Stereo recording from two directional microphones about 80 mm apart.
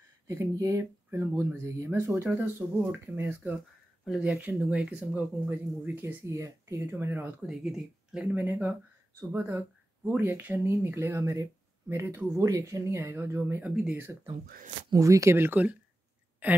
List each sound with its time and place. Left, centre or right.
0.3 s speech: right
6.2 s speech: right
7.4 s speech: centre
8.4 s speech: right
9.3 s speech: right
12.4 s speech: right
14.9 s speech: right